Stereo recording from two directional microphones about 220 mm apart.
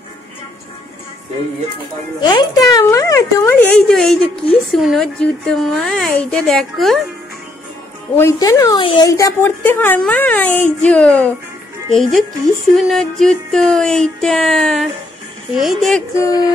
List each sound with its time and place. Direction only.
2.1 s speech: 20° left (ahead or behind); by 7.0 s centre (ahead or behind)
8.2 s a woman's voice: 15° left (ahead or behind)
16.2 s a woman's voice: 15° left (ahead or behind)